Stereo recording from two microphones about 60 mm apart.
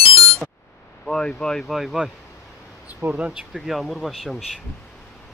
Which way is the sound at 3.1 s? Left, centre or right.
Centre.